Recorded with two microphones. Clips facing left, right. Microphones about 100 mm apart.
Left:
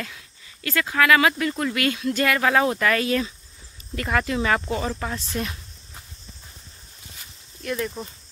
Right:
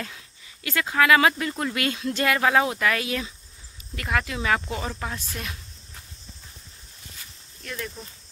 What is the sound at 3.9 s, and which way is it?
Speech, centre (ahead or behind).